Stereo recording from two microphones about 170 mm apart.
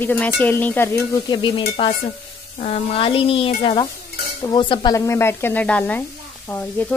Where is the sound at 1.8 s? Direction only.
30° left (ahead or behind).